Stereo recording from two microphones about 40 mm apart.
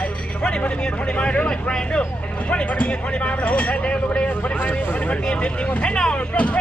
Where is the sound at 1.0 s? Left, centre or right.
Left.